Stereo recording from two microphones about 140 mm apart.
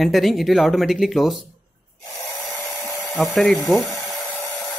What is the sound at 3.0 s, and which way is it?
Rub, centre (ahead or behind).